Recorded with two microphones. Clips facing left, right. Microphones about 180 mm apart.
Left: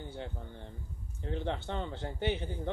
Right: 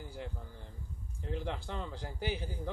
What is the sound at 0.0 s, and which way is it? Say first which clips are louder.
A man's voice: left 2 dB; 30° left (ahead or behind).